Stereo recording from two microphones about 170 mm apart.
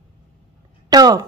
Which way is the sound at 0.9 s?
20° right (ahead or behind).